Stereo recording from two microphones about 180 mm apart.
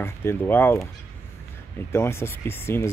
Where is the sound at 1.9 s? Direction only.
15° left (ahead or behind).